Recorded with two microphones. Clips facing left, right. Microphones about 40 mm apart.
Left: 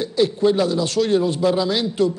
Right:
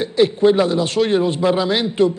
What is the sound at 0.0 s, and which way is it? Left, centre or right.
A man's voice, right.